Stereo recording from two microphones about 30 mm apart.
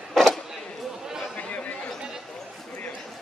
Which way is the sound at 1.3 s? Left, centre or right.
Left.